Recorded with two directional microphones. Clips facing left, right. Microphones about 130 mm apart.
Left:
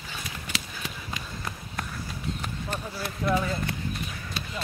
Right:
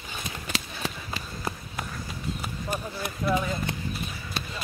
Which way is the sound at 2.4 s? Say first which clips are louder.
Right 1 dB; 10° right (ahead or behind).